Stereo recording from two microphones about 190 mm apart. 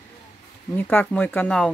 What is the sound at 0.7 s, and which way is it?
Speech, 10° left (ahead or behind).